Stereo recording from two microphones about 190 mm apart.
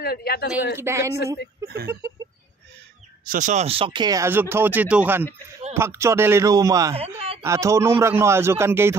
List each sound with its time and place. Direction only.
0.0 s speech: 55° left (ahead or behind)
0.7 s speech: 15° right (ahead or behind)
1.1 s a woman's voice: 60° left (ahead or behind)
3.3 s speech: 40° right (ahead or behind); by 8.9 s 15° right (ahead or behind)